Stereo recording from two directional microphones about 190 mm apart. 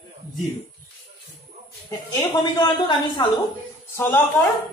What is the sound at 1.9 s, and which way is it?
Speech, 25° left (ahead or behind).